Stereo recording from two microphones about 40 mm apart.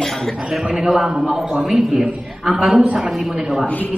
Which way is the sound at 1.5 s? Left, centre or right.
Centre.